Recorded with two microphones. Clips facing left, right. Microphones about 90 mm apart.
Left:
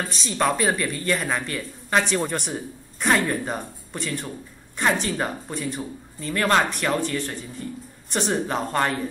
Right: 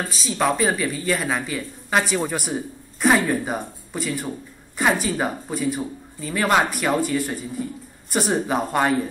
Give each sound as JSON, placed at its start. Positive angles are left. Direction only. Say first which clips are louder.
{"t": 0.1, "sound": "speech", "louder": "right 2 dB", "side_deg": -5}